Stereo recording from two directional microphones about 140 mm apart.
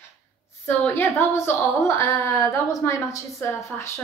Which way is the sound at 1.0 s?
15° left (ahead or behind).